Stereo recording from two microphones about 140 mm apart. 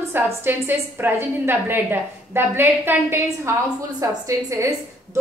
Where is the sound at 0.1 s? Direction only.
15° right (ahead or behind).